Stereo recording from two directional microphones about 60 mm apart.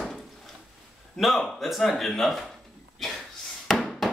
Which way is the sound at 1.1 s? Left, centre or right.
Centre.